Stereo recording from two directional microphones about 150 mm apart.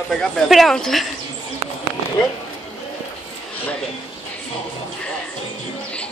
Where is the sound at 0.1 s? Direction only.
Centre (ahead or behind).